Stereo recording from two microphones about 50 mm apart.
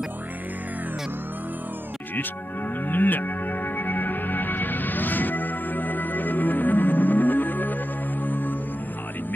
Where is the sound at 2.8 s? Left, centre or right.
Left.